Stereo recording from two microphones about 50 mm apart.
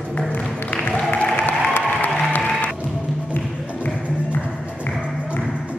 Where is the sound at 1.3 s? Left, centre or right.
Left.